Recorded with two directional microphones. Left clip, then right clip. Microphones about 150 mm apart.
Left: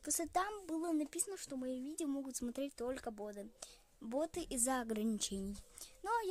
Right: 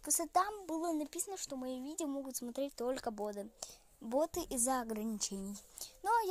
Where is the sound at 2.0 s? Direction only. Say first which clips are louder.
Right 1 dB; 20° left (ahead or behind).